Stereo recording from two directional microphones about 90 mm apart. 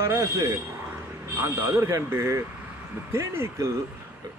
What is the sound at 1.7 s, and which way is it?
Speech, 30° right (ahead or behind).